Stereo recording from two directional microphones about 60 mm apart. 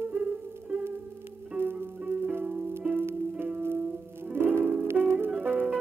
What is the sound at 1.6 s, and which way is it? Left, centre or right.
Music, right.